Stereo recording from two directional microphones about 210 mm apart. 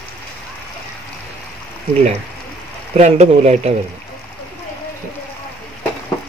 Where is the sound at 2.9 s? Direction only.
30° right (ahead or behind).